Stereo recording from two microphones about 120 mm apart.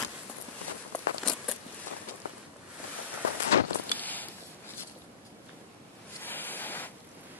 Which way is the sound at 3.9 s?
15° left (ahead or behind).